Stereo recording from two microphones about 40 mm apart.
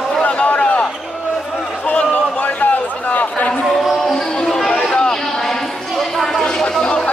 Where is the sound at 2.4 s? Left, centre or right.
Left.